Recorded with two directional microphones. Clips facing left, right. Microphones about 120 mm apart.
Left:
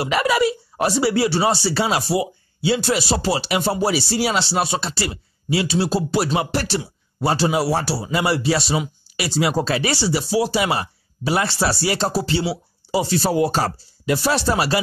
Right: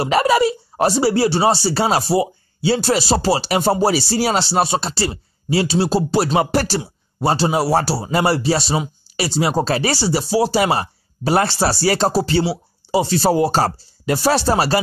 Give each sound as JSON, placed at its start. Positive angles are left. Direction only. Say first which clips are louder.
{"t": 0.0, "sound": "speech", "louder": "right 3 dB", "side_deg": -35}
{"t": 6.5, "sound": "speech", "louder": "right 4 dB", "side_deg": -40}
{"t": 6.8, "sound": "speech", "louder": "right 2 dB", "side_deg": -30}
{"t": 12.9, "sound": "speech", "louder": "right 3 dB", "side_deg": -30}